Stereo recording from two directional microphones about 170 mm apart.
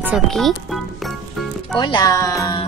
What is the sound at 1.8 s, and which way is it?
Speech, 25° left (ahead or behind).